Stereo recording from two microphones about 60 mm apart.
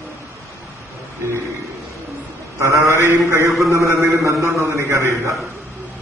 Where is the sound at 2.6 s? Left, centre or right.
Right.